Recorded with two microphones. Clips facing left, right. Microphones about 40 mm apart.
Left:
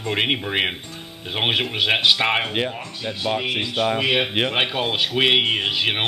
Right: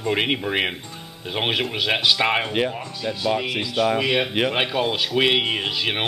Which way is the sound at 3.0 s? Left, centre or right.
Left.